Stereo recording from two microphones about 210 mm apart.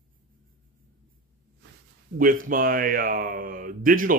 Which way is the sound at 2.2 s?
40° right (ahead or behind).